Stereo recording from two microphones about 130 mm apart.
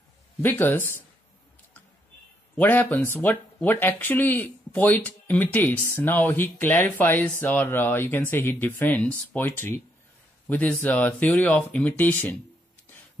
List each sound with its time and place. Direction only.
0.4 s speech: 15° left (ahead or behind)
2.5 s speech: 15° left (ahead or behind)